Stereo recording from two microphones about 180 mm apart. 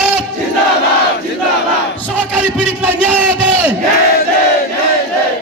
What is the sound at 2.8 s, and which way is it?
Crowd, 5° right (ahead or behind).